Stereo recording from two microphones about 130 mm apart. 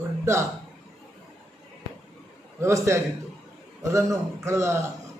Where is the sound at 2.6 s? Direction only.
20° right (ahead or behind).